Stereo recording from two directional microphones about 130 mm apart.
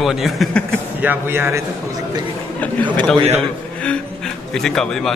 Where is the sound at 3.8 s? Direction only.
5° left (ahead or behind).